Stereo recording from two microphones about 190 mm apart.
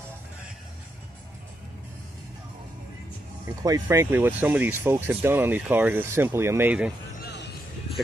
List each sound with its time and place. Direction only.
3.4 s speech: 20° right (ahead or behind)
7.2 s music: 60° left (ahead or behind)